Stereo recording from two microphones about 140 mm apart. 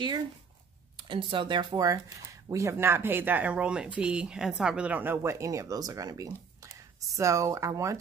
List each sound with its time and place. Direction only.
0.9 s speech: 35° right (ahead or behind)